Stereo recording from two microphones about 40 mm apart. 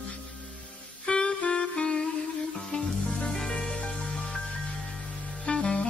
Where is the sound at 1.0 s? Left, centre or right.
Left.